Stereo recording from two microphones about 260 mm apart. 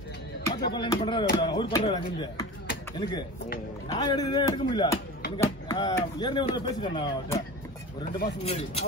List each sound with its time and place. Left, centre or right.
0.7 s speech: centre